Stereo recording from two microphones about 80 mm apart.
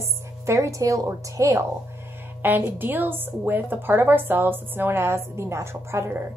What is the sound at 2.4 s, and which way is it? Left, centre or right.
A woman's voice, right.